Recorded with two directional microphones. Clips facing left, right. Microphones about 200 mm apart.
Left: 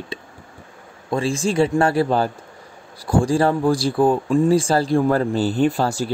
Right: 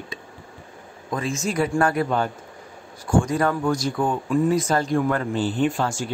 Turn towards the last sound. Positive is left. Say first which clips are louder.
# left 4 dB
turn(degrees=35)  # may be behind; listen again after turning